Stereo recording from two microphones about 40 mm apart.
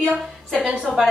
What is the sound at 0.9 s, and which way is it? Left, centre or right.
Speech, centre.